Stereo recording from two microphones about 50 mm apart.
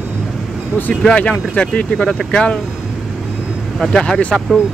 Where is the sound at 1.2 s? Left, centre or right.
Left.